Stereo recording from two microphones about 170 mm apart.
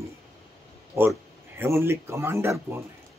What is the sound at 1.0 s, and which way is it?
Speech, 15° right (ahead or behind).